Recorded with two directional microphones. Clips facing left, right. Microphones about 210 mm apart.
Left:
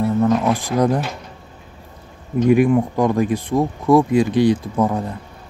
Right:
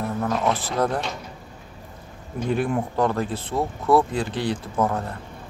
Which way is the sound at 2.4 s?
15° left (ahead or behind).